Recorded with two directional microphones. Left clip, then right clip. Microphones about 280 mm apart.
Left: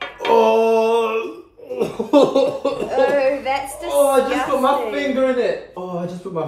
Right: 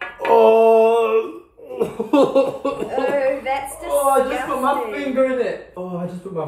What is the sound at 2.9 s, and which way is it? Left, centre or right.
Speech, centre.